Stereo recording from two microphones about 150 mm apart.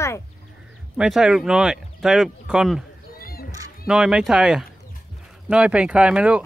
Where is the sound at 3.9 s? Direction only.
5° right (ahead or behind).